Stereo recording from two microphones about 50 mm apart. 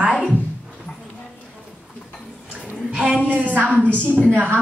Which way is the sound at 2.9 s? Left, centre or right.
Centre.